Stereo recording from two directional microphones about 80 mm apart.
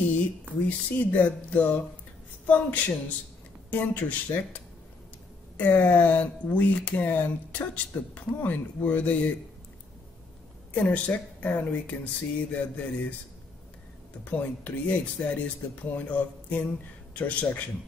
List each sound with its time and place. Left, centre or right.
0.2 s speech: centre
5.6 s speech: left
10.7 s speech: centre
14.2 s speech: centre